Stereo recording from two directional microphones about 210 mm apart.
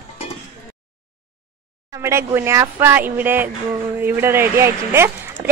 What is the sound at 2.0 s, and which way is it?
Speech, 10° right (ahead or behind).